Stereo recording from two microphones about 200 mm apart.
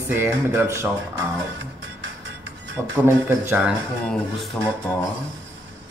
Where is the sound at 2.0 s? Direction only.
65° right (ahead or behind).